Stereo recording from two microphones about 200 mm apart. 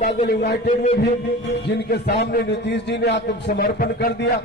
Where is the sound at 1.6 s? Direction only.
55° left (ahead or behind).